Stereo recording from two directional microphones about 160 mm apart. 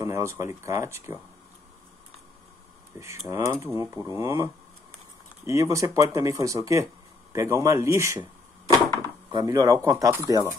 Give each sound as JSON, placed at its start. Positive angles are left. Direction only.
{"t": 0.0, "sound": "speech", "side_deg": -20}
{"t": 3.0, "sound": "speech", "side_deg": -15}
{"t": 9.3, "sound": "speech", "side_deg": -25}